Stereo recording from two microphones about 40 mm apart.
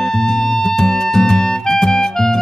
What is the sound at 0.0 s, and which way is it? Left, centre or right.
Music, centre.